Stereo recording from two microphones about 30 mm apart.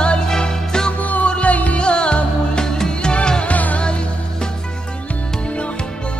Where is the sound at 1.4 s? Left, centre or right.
Left.